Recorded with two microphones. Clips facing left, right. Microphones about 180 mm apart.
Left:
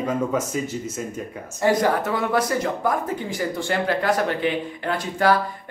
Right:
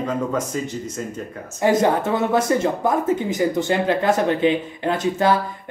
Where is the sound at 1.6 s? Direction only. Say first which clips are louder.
Right 2 dB; 25° right (ahead or behind).